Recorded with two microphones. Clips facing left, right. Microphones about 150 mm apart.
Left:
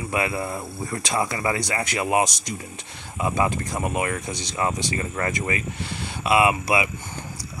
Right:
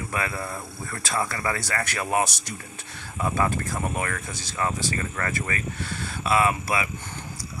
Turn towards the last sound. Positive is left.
turn(degrees=15)  # may be behind; listen again after turning